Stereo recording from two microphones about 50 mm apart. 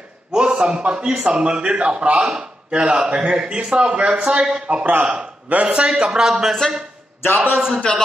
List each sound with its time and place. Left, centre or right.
0.3 s a man's voice: centre
4.6 s a man's voice: right; by 7.8 s centre